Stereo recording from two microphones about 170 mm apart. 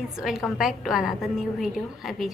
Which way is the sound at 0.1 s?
Centre (ahead or behind).